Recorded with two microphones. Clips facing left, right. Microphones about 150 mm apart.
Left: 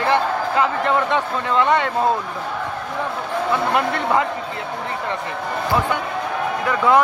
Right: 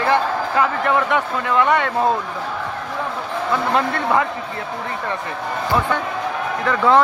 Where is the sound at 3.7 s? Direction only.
15° left (ahead or behind).